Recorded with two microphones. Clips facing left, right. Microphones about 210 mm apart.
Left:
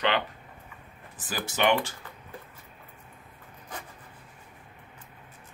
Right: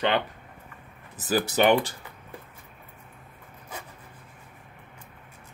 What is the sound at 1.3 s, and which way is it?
Speech, 40° right (ahead or behind).